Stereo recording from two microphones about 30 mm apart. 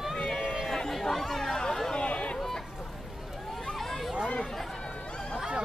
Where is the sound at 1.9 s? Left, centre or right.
Left.